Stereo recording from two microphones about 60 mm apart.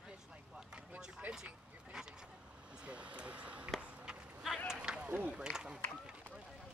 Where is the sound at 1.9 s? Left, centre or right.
Centre.